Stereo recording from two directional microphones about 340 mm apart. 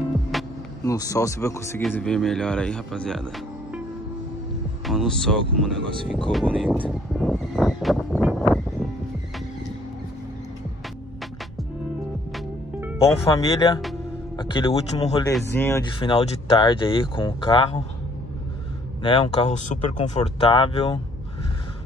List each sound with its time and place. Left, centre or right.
0.3 s music: centre
0.9 s speech: centre
4.8 s speech: centre
6.9 s a sound: centre
12.3 s music: centre
13.2 s speech: centre
19.0 s speech: centre